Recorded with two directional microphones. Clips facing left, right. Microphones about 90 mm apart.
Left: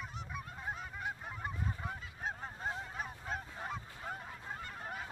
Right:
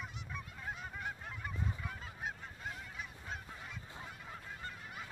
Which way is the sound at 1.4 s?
30° left (ahead or behind).